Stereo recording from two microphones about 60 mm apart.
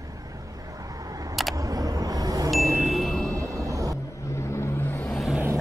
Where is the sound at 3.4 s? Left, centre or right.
Right.